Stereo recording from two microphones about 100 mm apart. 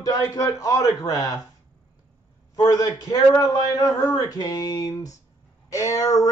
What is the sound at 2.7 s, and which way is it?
Speech, 40° left (ahead or behind).